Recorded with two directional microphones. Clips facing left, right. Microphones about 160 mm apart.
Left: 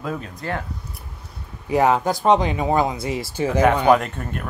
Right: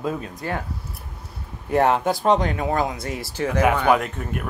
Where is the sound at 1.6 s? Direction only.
Centre (ahead or behind).